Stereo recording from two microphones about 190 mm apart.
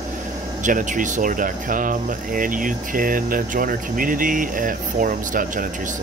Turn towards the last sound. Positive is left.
turn(degrees=-45)  # may be behind; listen again after turning